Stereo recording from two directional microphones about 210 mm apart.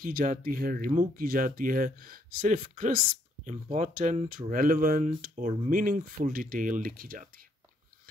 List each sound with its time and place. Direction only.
0.0 s speech: 40° right (ahead or behind)